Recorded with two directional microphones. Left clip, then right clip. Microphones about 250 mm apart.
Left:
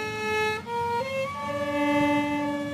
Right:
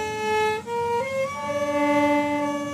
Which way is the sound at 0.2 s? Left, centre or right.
Centre.